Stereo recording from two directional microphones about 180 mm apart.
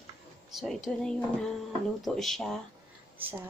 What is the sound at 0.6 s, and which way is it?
A woman's voice, centre (ahead or behind).